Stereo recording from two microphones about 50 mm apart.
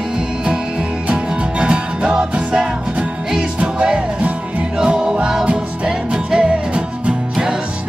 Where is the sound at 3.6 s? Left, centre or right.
Right.